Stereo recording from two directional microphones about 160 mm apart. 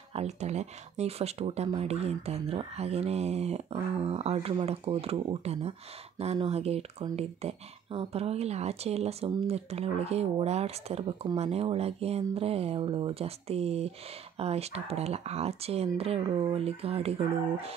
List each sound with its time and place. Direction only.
0.1 s speech: 45° right (ahead or behind)